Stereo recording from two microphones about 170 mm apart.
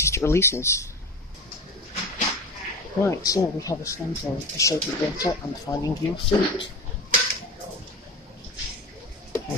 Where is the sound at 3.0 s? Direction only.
20° left (ahead or behind).